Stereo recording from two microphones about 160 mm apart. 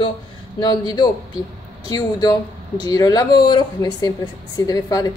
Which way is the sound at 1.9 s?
25° left (ahead or behind).